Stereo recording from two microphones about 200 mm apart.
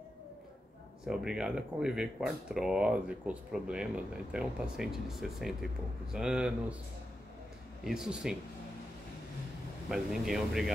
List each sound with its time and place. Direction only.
1.0 s speech: 5° right (ahead or behind)
7.8 s speech: 5° right (ahead or behind)
9.8 s speech: centre (ahead or behind)